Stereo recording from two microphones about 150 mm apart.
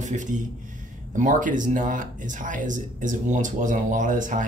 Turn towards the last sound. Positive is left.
turn(degrees=-60)  # may be behind; listen again after turning